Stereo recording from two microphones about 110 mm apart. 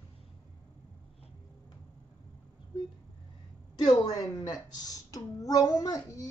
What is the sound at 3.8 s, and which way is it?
A child's voice, 35° left (ahead or behind).